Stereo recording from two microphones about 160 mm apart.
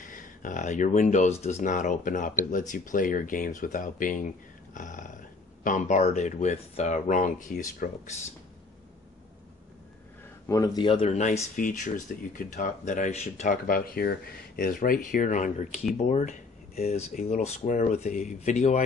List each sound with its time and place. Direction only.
0.0 s speech: 55° left (ahead or behind)
10.5 s speech: 25° left (ahead or behind); by 18.8 s 45° left (ahead or behind)